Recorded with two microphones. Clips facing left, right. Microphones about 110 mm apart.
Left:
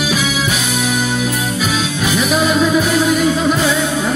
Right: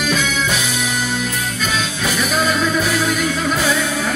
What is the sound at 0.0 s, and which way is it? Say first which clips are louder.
Music: left 2 dB; 5° left (ahead or behind).